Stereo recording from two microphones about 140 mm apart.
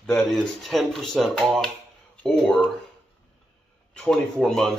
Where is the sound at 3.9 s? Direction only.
5° left (ahead or behind).